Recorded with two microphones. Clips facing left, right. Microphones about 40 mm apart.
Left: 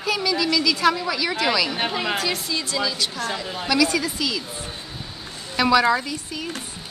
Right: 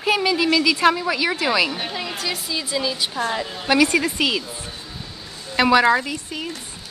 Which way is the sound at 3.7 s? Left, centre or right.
Right.